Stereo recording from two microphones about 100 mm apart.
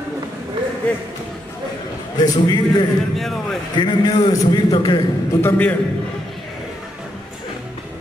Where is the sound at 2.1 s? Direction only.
45° left (ahead or behind).